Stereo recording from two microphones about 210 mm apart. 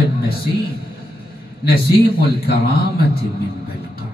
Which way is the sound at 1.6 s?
45° left (ahead or behind).